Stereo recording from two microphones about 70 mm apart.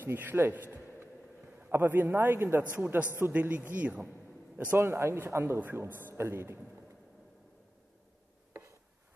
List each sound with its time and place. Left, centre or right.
0.0 s a man's voice: right
2.7 s speech: right
4.7 s a man's voice: right